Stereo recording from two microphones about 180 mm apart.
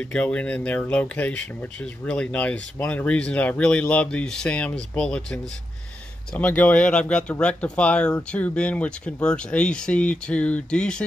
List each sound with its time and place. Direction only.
0.0 s speech: 5° left (ahead or behind)